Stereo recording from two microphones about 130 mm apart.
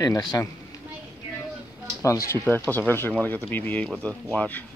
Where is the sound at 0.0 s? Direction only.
30° left (ahead or behind).